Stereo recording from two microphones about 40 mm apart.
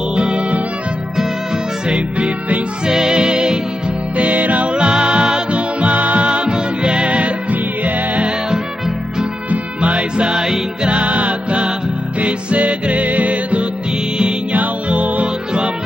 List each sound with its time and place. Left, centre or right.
0.1 s music: right
1.9 s music: right
2.9 s music: centre
4.2 s music: right
4.7 s music: right
9.5 s music: right; by 10.9 s centre
10.9 s music: right